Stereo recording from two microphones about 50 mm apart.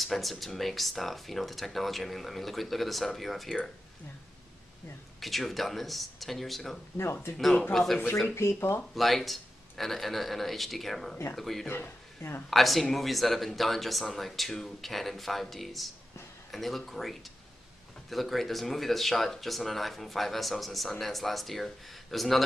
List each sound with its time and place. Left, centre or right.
0.0 s speech: centre
3.4 s speech: centre
5.2 s speech: centre
8.5 s speech: left
8.9 s speech: centre